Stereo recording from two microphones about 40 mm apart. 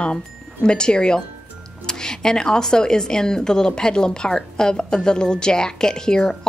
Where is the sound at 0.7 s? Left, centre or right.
Left.